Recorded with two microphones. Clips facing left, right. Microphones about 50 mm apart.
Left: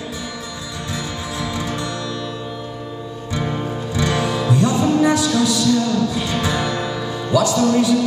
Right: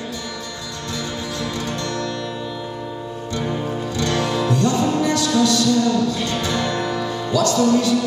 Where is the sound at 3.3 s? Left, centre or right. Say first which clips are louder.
Left 1 dB; centre.